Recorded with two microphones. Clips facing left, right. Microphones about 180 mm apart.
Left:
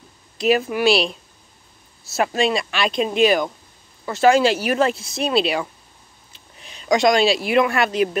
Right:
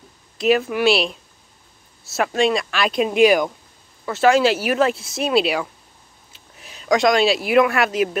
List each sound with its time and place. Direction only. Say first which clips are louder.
0.4 s speech: right 1 dB; centre (ahead or behind)
4.0 s speech: even; centre (ahead or behind)